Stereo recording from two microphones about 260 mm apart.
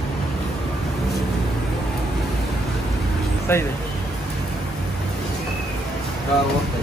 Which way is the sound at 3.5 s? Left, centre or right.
Centre.